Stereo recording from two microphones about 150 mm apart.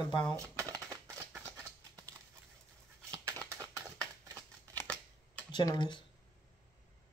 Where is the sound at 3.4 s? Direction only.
20° right (ahead or behind).